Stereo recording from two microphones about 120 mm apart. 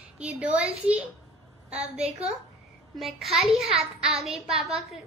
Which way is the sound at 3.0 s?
Centre (ahead or behind).